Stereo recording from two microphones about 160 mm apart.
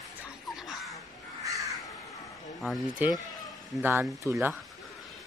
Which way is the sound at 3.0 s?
10° right (ahead or behind).